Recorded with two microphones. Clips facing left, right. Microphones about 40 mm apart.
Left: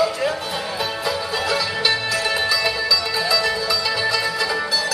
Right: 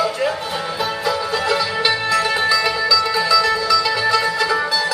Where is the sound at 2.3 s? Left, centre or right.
Centre.